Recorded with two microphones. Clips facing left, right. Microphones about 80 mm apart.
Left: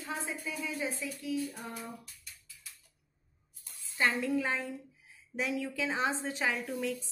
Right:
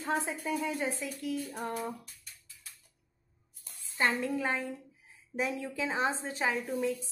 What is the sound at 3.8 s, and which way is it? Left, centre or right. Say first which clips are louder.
A woman's voice: right 1 dB; right.